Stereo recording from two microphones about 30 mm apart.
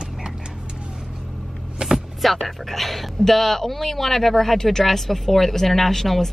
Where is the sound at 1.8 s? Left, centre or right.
Right.